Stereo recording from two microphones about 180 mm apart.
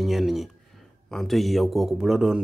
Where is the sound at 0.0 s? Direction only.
Centre (ahead or behind).